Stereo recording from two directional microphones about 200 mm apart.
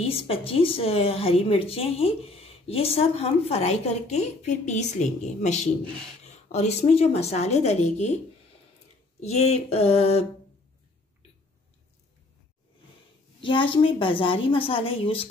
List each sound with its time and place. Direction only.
0.0 s a woman's voice: 30° left (ahead or behind)
9.2 s a woman's voice: 35° left (ahead or behind)
13.4 s a woman's voice: 25° left (ahead or behind)